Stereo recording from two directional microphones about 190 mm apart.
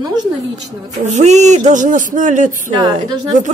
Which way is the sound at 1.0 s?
35° right (ahead or behind).